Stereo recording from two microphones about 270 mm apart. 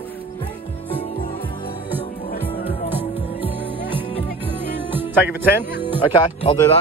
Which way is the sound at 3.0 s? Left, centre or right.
Centre.